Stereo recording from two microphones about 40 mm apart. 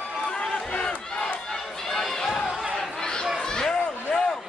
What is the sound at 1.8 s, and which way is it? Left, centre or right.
Run, centre.